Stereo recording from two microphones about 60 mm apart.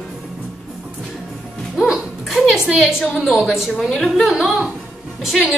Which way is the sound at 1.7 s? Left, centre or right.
Centre.